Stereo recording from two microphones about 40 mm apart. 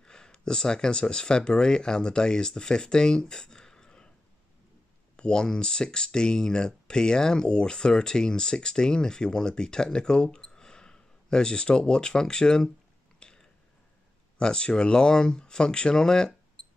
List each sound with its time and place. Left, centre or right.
0.0 s speech: centre
5.1 s speech: left
13.2 s a sound: centre
14.4 s speech: centre